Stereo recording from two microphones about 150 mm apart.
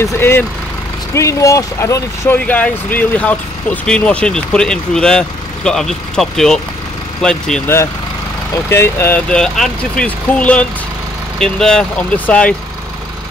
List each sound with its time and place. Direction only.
0.0 s speech: 15° left (ahead or behind)
8.6 s speech: 15° left (ahead or behind)